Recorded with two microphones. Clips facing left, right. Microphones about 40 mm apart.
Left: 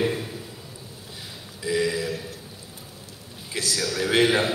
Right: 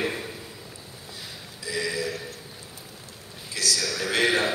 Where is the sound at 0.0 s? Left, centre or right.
Centre.